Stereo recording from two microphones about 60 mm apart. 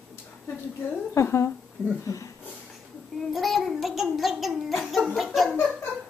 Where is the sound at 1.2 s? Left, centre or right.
Left.